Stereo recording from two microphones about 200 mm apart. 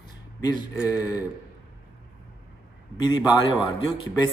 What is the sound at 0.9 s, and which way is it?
Speech, 20° left (ahead or behind).